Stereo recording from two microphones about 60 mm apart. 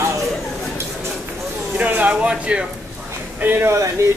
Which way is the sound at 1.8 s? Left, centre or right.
Right.